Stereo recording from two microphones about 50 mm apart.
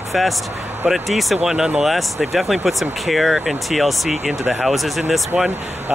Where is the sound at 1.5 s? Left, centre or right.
Centre.